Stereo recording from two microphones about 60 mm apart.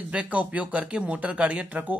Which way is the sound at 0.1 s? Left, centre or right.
Right.